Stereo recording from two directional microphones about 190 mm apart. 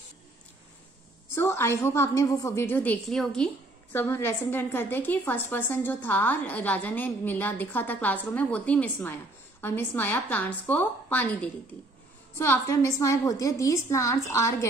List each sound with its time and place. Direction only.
1.3 s a woman's voice: 15° left (ahead or behind)